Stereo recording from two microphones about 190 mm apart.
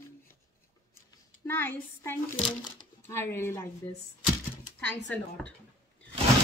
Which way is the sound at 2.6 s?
20° left (ahead or behind).